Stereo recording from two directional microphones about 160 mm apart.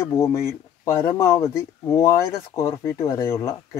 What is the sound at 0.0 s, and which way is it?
Speech, 15° left (ahead or behind).